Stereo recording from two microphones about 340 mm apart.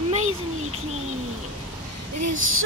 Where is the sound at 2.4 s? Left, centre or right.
Right.